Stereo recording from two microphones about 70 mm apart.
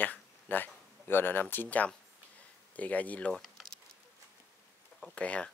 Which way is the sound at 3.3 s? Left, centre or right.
Centre.